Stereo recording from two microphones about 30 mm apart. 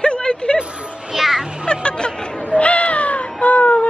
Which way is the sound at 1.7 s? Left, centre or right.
Left.